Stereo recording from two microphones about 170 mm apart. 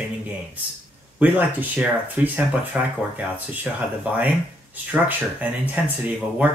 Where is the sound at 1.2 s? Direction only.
10° right (ahead or behind).